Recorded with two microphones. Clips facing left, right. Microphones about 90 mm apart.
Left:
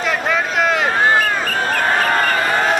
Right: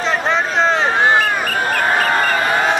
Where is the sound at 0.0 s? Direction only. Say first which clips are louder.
Right 1 dB; 30° right (ahead or behind).